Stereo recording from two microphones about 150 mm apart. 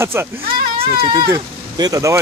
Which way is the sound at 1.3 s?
25° right (ahead or behind).